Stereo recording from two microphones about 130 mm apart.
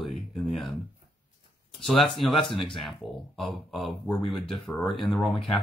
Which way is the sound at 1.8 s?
Centre (ahead or behind).